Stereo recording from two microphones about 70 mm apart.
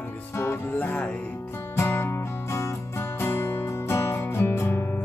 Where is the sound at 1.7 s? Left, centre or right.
Left.